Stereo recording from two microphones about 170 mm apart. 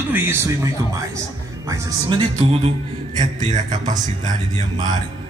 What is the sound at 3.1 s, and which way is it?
Speech, 45° right (ahead or behind).